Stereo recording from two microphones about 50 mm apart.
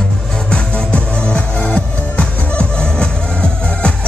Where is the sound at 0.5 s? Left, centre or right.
Left.